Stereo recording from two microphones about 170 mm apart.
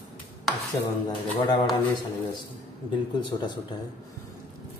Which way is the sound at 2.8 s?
25° left (ahead or behind).